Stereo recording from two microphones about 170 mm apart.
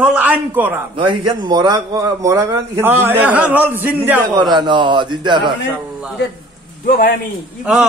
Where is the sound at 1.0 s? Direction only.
30° right (ahead or behind); by 3.9 s 10° right (ahead or behind).